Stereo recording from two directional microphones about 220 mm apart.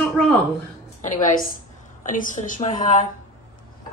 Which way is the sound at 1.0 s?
35° left (ahead or behind).